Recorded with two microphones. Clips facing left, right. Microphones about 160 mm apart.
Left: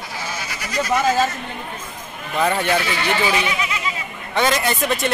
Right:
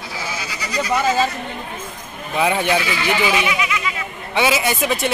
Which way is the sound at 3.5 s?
35° left (ahead or behind).